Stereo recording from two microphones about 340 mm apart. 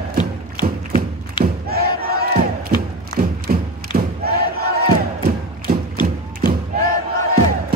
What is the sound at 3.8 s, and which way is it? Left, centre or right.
Crowd, right.